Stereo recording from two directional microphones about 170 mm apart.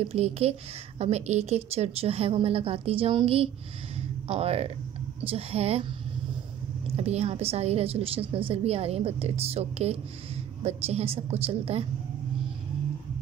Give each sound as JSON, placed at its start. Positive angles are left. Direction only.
{"t": 0.0, "sound": "a woman's voice", "side_deg": -35}
{"t": 7.0, "sound": "a woman's voice", "side_deg": -40}